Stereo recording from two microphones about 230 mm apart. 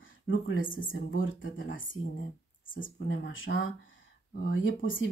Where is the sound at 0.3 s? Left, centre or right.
Left.